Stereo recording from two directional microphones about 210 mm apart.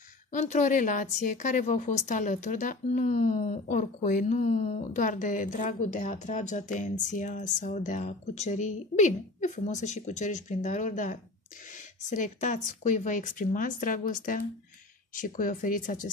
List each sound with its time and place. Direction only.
0.3 s a woman's voice: 35° left (ahead or behind)